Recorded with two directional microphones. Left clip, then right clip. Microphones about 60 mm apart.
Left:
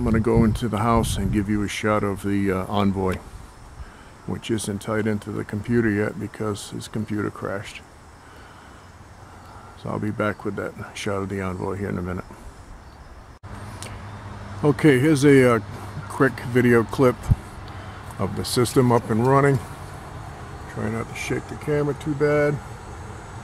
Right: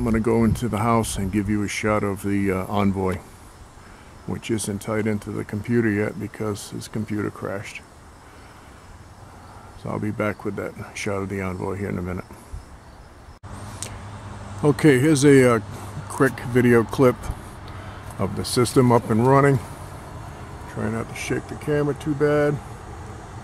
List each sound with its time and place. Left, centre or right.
0.0 s speech: centre
4.3 s speech: centre
9.8 s speech: centre
14.6 s speech: centre
18.9 s speech: centre
20.6 s speech: centre